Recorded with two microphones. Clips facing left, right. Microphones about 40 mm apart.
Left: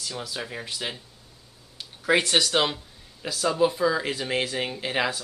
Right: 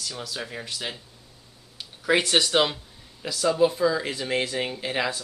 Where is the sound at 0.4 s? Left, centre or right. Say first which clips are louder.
Even; centre.